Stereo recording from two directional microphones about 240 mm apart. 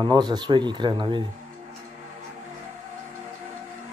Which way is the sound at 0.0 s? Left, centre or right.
Centre.